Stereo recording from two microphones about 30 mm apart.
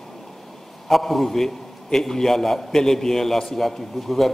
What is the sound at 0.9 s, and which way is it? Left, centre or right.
A man's voice, centre.